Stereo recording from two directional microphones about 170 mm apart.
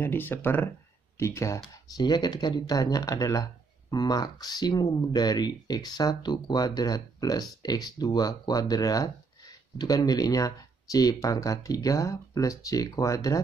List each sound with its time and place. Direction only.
0.0 s speech: 10° left (ahead or behind)